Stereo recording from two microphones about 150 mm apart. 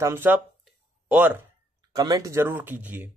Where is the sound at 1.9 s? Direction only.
25° right (ahead or behind).